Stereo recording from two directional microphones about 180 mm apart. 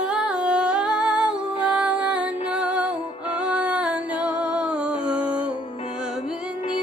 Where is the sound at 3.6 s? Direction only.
5° right (ahead or behind).